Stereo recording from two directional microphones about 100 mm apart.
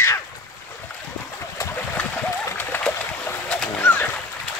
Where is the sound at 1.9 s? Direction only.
15° left (ahead or behind).